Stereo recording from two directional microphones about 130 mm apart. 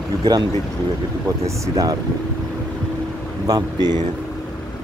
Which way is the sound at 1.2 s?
25° right (ahead or behind).